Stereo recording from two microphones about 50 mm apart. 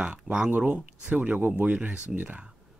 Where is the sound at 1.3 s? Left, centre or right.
Right.